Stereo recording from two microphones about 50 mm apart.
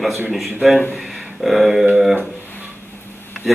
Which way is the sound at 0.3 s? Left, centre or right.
Centre.